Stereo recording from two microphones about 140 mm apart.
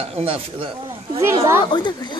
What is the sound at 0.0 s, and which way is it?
Speech, 45° right (ahead or behind).